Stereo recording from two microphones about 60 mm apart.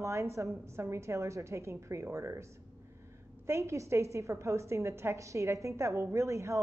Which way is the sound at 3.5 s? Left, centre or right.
Right.